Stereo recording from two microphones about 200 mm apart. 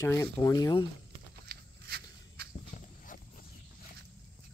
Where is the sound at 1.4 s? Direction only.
55° right (ahead or behind).